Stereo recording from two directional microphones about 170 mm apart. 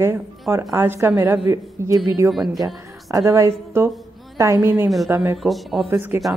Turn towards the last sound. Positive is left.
turn(degrees=-15)  # may be behind; listen again after turning